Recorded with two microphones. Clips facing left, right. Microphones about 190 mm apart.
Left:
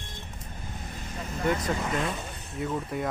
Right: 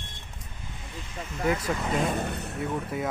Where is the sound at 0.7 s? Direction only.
45° left (ahead or behind).